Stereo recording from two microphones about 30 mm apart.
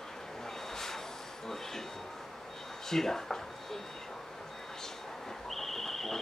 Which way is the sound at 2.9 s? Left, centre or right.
Centre.